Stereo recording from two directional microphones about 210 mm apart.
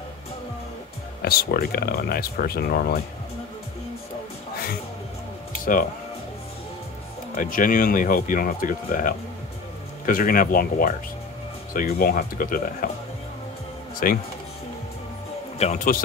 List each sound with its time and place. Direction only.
1.2 s speech: 45° left (ahead or behind)
7.3 s speech: 40° left (ahead or behind)
14.0 s speech: 40° left (ahead or behind)
15.6 s speech: 35° left (ahead or behind)